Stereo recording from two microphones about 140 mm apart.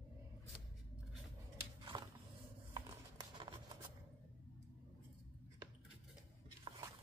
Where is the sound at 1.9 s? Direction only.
35° right (ahead or behind).